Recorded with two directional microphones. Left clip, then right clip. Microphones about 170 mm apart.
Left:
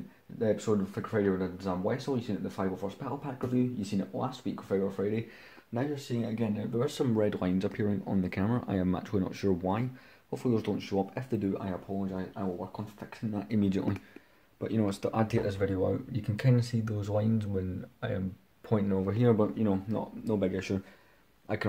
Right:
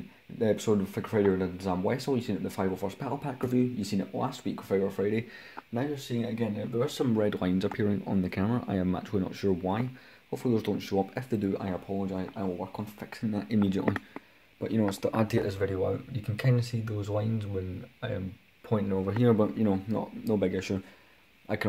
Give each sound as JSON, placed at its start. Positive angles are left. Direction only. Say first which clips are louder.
{"t": 0.4, "sound": "speech", "louder": "right 2 dB", "side_deg": -35}
{"t": 5.8, "sound": "speech", "louder": "right 1 dB", "side_deg": -10}
{"t": 16.3, "sound": "speech", "louder": "even", "side_deg": -5}